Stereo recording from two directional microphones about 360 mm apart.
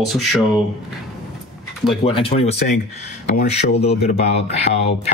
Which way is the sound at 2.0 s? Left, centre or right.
Centre.